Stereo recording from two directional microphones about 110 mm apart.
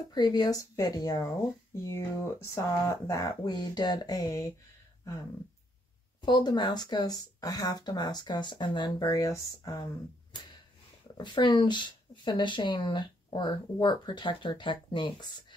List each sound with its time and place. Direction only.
0.1 s speech: 40° left (ahead or behind)
6.2 s speech: 45° left (ahead or behind)
11.1 s speech: 45° left (ahead or behind)